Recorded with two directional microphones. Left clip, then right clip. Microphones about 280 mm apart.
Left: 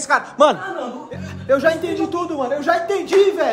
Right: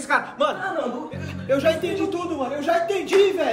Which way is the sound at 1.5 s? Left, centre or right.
Centre.